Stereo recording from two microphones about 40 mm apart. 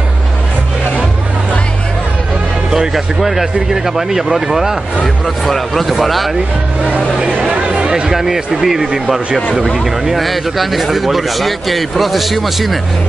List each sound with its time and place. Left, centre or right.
2.7 s speech: centre
5.0 s speech: centre
7.5 s chatter: right
7.9 s speech: centre
10.1 s speech: centre